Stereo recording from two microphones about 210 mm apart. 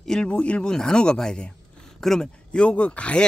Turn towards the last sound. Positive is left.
turn(degrees=5)  # may be behind; listen again after turning